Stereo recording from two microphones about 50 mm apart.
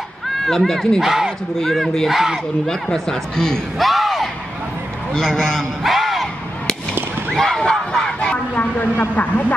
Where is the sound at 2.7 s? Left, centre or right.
Centre.